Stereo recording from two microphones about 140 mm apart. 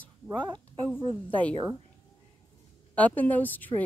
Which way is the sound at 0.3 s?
30° right (ahead or behind).